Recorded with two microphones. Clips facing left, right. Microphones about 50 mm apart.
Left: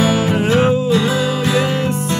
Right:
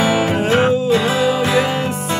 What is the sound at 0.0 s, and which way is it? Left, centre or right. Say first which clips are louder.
Music: even; centre.